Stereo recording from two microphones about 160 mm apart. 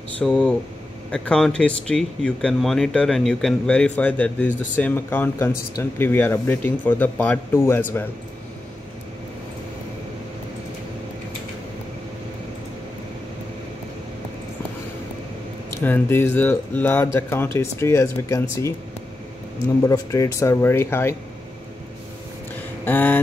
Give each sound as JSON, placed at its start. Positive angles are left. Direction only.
{"t": 0.2, "sound": "speech", "side_deg": 5}
{"t": 15.7, "sound": "speech", "side_deg": 15}
{"t": 19.8, "sound": "speech", "side_deg": 20}
{"t": 22.8, "sound": "speech", "side_deg": 10}